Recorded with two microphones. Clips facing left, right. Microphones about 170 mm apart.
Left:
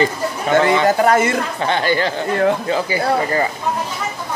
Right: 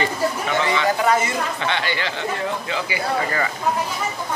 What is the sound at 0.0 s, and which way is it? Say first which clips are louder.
Speech: left 3 dB; 50° left (ahead or behind).